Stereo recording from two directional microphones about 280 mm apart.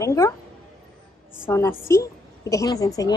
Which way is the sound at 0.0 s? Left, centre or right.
Centre.